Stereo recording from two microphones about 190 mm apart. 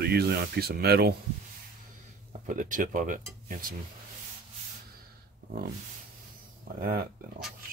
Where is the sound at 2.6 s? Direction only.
45° right (ahead or behind).